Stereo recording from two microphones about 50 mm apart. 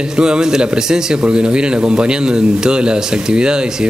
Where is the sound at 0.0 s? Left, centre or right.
Centre.